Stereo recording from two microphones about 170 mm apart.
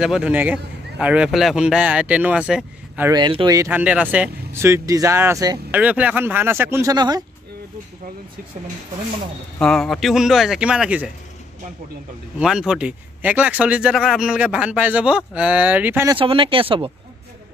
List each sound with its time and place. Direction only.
0.0 s speech: 5° right (ahead or behind)
3.1 s speech: 30° right (ahead or behind)
3.6 s speech: 5° right (ahead or behind)
5.7 s speech: 10° right (ahead or behind)
9.6 s speech: 5° left (ahead or behind)
12.4 s speech: 5° right (ahead or behind)
16.2 s speech: 30° right (ahead or behind)